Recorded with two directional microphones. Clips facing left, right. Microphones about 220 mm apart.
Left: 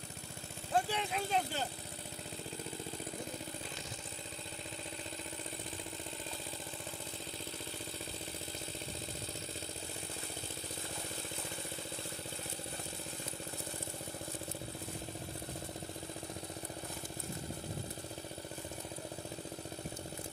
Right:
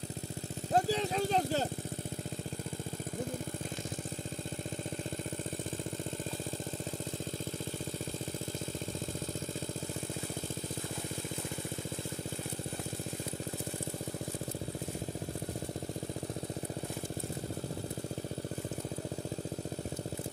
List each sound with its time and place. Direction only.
0.7 s vehicle: 40° right (ahead or behind)